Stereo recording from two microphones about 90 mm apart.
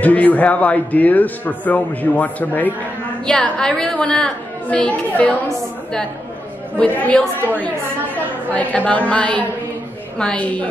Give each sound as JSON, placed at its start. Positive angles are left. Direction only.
{"t": 0.0, "sound": "speech", "side_deg": 15}
{"t": 7.1, "sound": "speech", "side_deg": 15}